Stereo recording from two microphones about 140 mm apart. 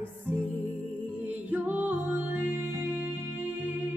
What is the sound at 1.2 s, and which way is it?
Music, 15° right (ahead or behind).